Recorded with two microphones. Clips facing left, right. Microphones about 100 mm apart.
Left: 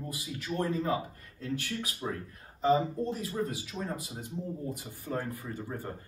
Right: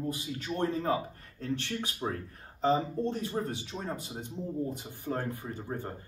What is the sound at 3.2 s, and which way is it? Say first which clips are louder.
Speech: even; 30° right (ahead or behind).